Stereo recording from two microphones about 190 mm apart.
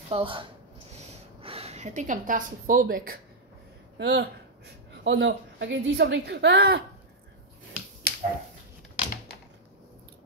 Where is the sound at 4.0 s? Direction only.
65° right (ahead or behind).